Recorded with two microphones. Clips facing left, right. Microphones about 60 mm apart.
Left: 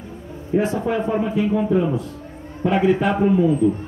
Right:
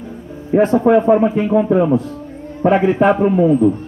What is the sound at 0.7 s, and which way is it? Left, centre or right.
A man's voice, right.